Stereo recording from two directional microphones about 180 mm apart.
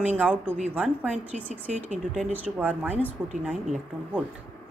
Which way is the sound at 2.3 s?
10° right (ahead or behind).